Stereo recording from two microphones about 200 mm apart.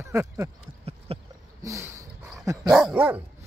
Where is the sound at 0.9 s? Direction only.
30° right (ahead or behind).